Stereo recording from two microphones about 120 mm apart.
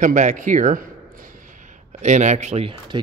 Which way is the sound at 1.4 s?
90° right.